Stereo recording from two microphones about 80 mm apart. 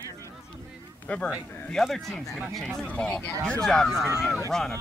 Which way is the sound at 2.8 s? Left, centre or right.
Centre.